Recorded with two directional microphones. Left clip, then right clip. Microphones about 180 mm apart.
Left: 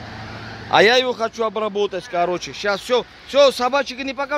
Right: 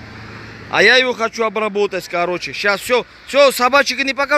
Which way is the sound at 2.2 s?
5° left (ahead or behind).